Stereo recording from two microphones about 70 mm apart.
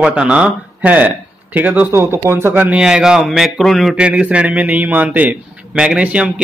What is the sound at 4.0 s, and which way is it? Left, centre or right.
A man's voice, centre.